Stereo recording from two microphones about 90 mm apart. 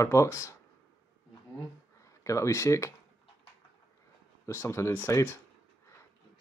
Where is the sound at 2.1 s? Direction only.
35° left (ahead or behind).